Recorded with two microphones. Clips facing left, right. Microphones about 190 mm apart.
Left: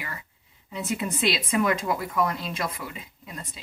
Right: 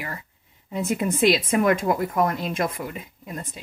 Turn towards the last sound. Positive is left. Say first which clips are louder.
# right 6 dB
turn(degrees=-50)  # may be behind; listen again after turning